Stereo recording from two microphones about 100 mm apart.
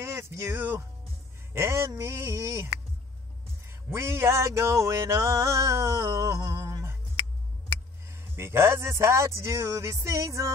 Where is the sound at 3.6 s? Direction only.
25° right (ahead or behind).